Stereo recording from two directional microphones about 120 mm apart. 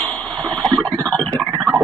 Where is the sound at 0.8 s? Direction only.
40° right (ahead or behind).